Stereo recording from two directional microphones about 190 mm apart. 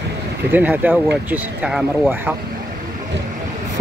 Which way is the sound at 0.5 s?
10° right (ahead or behind).